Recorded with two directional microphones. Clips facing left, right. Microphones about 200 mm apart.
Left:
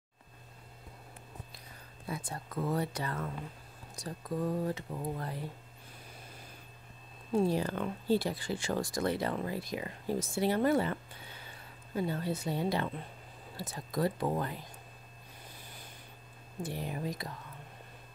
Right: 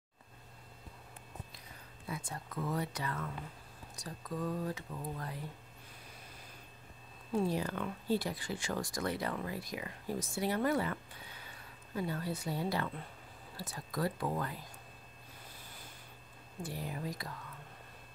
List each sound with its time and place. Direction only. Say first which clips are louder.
2.0 s speech: left 3 dB; 35° left (ahead or behind)
7.3 s speech: left 4 dB; 30° left (ahead or behind)
16.6 s speech: left 3 dB; 20° left (ahead or behind)